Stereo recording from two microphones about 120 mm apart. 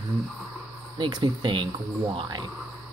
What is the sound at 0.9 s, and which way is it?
Speech, 40° right (ahead or behind).